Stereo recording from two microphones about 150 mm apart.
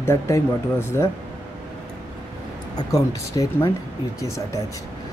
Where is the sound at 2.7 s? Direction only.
20° left (ahead or behind).